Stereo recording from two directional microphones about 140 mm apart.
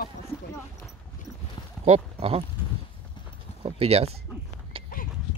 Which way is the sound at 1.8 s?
50° right (ahead or behind).